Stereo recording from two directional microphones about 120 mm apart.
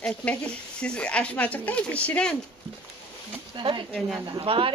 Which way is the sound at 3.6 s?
40° right (ahead or behind).